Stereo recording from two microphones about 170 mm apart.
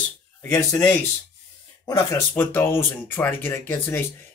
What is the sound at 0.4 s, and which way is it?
Speech, 15° left (ahead or behind).